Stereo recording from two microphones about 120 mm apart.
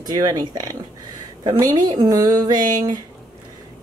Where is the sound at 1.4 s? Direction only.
30° right (ahead or behind).